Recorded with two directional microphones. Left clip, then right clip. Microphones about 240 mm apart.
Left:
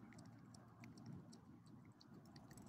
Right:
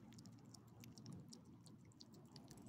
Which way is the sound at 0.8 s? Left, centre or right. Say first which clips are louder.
Even; right.